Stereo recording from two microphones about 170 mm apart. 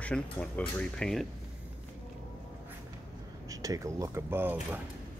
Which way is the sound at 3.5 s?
20° right (ahead or behind).